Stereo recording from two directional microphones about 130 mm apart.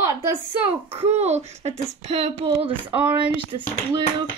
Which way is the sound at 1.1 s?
55° right (ahead or behind).